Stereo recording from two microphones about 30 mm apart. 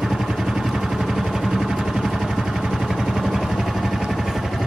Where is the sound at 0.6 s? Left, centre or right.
Centre.